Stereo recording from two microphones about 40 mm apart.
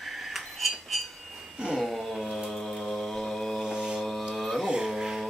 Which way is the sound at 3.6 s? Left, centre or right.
Centre.